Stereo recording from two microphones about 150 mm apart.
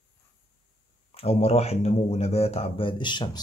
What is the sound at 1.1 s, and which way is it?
Speech, 40° left (ahead or behind).